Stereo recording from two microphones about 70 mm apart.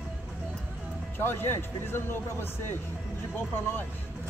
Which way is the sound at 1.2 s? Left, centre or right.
Left.